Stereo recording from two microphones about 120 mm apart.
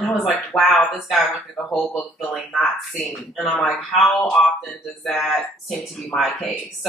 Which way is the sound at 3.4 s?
15° left (ahead or behind).